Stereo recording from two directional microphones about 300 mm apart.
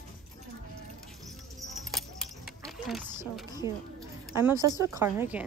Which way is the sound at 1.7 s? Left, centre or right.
Centre.